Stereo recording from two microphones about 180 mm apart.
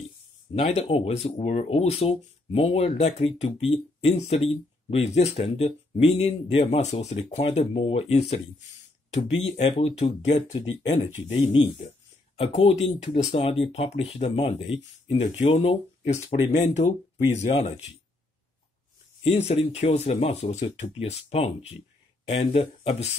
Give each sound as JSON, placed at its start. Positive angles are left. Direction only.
{"t": 0.6, "sound": "speech", "side_deg": 35}
{"t": 10.6, "sound": "speech", "side_deg": 90}
{"t": 11.1, "sound": "speech", "side_deg": 40}
{"t": 19.2, "sound": "speech", "side_deg": 35}